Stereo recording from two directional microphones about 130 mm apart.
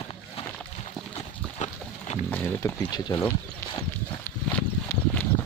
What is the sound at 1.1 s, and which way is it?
Clip-clop, 60° left (ahead or behind).